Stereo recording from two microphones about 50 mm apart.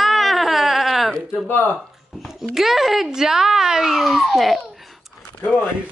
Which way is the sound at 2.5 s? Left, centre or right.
Centre.